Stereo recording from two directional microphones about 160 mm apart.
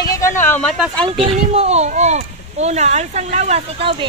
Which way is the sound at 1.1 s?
35° right (ahead or behind).